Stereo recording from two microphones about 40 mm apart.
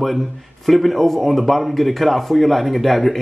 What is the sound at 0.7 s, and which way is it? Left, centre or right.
A man's voice, centre.